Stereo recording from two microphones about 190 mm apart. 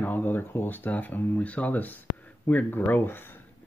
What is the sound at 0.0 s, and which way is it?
Speech, 10° left (ahead or behind).